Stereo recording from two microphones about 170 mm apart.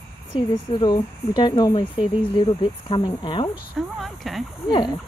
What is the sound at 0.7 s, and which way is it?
Speech, 25° left (ahead or behind).